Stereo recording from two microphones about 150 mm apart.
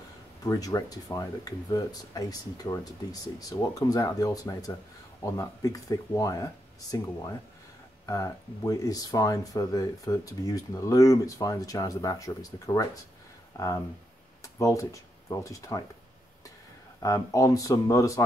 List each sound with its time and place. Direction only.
0.4 s speech: 25° left (ahead or behind)
17.0 s speech: 20° left (ahead or behind)